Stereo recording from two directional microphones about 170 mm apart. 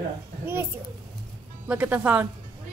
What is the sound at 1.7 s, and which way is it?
Speech, 10° right (ahead or behind).